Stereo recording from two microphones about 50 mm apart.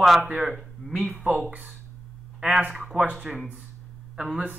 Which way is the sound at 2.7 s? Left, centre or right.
Centre.